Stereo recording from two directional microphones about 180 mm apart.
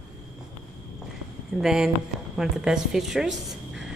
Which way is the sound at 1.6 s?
5° right (ahead or behind).